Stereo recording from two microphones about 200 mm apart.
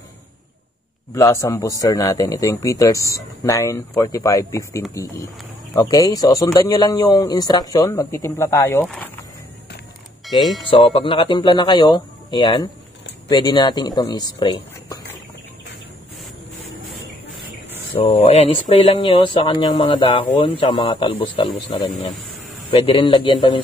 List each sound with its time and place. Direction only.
1.1 s a man's voice: 15° left (ahead or behind)
10.9 s speech: 25° left (ahead or behind)
17.9 s speech: 30° left (ahead or behind)
22.8 s speech: 25° left (ahead or behind)